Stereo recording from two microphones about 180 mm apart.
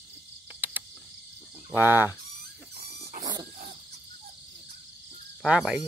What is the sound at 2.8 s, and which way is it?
Dog, 30° right (ahead or behind).